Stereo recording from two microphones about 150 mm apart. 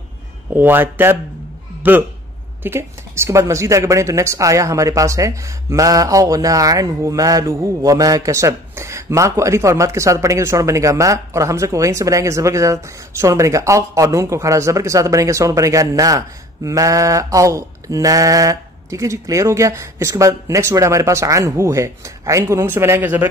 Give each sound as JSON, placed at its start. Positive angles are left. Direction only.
{"t": 0.5, "sound": "a man's voice", "side_deg": -15}